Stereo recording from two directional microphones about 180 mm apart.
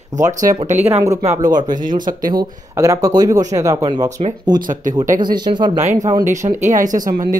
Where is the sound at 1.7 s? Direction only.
50° right (ahead or behind).